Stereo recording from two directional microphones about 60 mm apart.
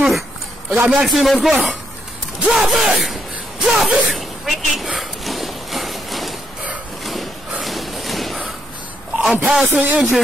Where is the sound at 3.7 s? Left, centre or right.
Centre.